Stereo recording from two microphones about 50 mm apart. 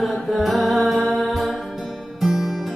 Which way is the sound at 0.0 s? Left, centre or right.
Centre.